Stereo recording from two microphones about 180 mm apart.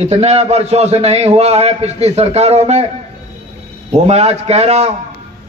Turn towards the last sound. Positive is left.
turn(degrees=-35)  # may be behind; listen again after turning